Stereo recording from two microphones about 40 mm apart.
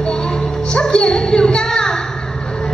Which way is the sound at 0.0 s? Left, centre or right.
Centre.